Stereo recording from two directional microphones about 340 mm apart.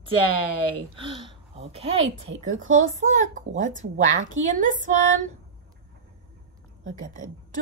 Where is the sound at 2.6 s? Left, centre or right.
Right.